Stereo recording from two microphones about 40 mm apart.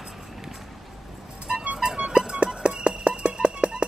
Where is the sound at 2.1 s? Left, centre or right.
Right.